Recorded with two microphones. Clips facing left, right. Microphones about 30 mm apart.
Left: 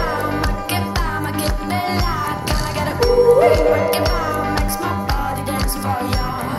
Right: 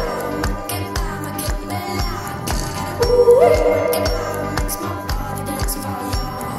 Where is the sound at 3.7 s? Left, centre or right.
Left.